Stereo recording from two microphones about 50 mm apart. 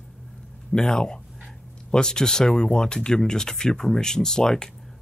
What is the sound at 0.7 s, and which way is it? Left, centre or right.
Speech, centre.